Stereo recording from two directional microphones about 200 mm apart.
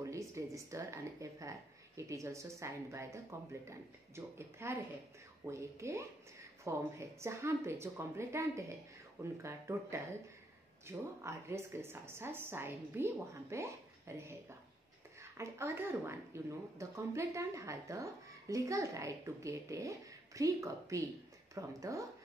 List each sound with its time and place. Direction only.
0.0 s speech: 15° right (ahead or behind)
15.3 s speech: 15° right (ahead or behind)